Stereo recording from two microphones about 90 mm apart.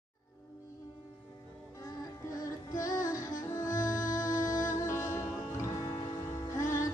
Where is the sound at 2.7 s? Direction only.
40° left (ahead or behind).